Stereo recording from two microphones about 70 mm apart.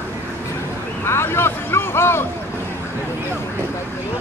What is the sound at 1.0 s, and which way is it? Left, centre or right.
Speech, left.